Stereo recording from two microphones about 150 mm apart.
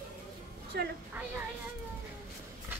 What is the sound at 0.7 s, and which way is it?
Speech, 90° right.